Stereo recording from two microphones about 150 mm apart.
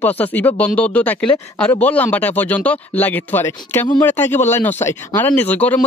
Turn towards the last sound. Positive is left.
turn(degrees=10)  # may be behind; listen again after turning